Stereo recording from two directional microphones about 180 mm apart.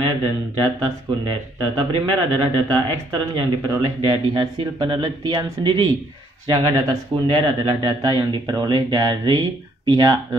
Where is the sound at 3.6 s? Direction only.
25° right (ahead or behind).